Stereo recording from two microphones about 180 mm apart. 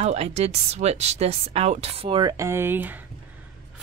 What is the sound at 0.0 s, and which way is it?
Speech, 35° right (ahead or behind).